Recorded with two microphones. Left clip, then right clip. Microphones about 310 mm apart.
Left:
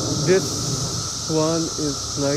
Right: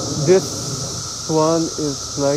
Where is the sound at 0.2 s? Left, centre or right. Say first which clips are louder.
Right 5 dB; centre.